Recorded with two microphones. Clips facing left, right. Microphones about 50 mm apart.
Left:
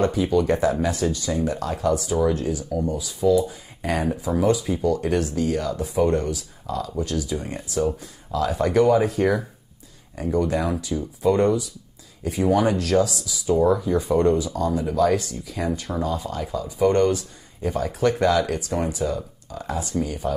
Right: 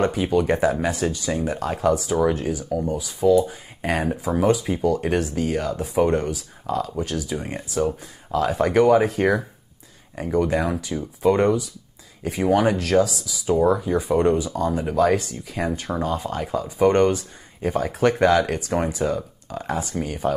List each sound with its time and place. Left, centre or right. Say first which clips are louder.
0.0 s speech: even; right
7.3 s speech: right 4 dB; right
14.9 s speech: right 2 dB; right